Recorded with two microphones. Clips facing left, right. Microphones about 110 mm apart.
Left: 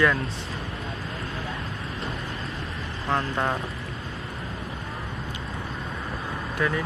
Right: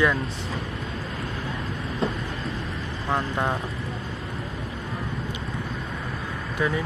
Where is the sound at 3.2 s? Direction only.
5° right (ahead or behind).